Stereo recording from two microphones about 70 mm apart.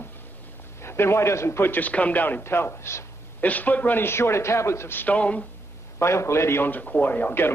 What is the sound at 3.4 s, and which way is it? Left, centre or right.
A man's voice, left.